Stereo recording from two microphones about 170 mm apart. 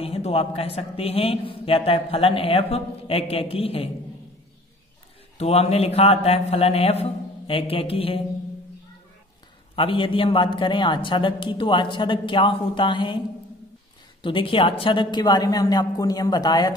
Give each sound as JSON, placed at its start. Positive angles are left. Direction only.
{"t": 0.0, "sound": "a man's voice", "side_deg": 35}
{"t": 5.4, "sound": "a man's voice", "side_deg": 40}
{"t": 9.8, "sound": "a man's voice", "side_deg": 30}
{"t": 14.2, "sound": "a man's voice", "side_deg": 30}